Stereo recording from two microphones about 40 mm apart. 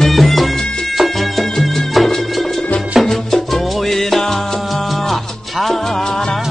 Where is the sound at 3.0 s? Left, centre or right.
Centre.